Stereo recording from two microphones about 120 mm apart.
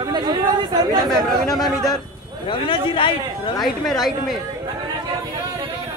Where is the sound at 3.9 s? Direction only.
Centre (ahead or behind).